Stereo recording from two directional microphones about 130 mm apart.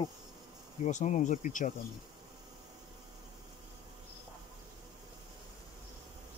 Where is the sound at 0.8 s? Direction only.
65° left (ahead or behind).